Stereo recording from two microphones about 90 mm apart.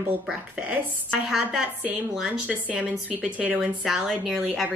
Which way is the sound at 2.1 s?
10° right (ahead or behind).